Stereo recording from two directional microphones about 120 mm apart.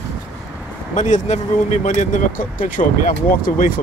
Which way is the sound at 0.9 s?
80° left.